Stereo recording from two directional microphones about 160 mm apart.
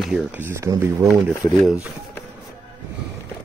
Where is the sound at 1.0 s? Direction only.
Centre (ahead or behind).